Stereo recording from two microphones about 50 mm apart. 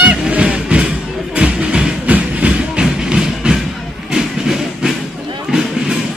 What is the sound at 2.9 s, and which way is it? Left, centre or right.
Music, centre.